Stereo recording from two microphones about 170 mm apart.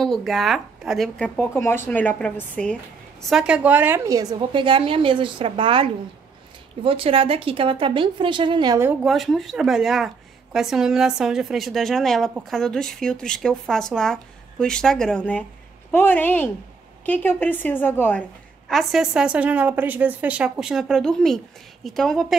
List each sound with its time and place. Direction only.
0.0 s a woman's voice: centre (ahead or behind)
3.3 s a woman's voice: 5° right (ahead or behind); by 8.7 s 25° right (ahead or behind)
9.0 s a woman's voice: centre (ahead or behind)
18.7 s a woman's voice: centre (ahead or behind)